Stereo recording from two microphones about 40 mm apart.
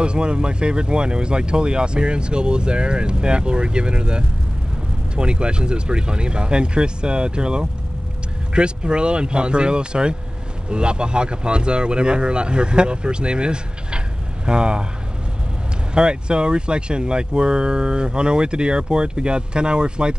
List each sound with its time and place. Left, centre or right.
0.0 s speech: right
15.9 s speech: right